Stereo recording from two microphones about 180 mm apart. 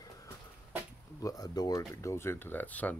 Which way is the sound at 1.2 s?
20° left (ahead or behind).